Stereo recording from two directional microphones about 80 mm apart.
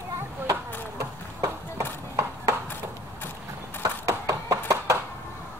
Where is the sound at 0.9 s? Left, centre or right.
Right.